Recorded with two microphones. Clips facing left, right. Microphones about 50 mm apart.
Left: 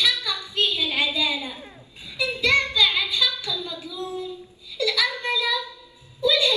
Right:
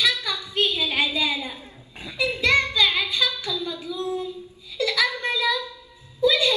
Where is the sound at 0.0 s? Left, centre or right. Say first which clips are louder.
Right 1 dB; right.